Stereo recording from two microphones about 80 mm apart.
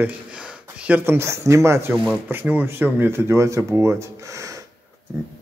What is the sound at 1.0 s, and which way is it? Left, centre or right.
Speech, right.